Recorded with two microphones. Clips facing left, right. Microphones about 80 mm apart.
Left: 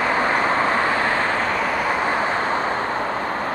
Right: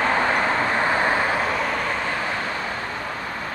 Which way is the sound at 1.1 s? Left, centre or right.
Centre.